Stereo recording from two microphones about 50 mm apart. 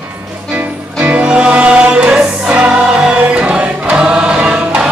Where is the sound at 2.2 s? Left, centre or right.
Centre.